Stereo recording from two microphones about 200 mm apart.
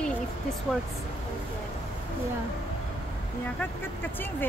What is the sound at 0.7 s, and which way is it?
Speech, centre (ahead or behind).